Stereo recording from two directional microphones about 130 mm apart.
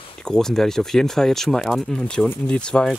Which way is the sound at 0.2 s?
5° left (ahead or behind).